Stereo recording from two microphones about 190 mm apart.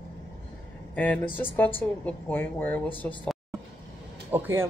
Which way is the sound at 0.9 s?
5° left (ahead or behind).